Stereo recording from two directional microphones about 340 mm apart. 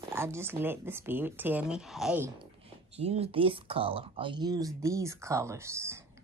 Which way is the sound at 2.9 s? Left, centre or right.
Centre.